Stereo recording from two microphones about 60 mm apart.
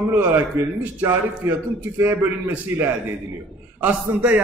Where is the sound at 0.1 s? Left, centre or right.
Right.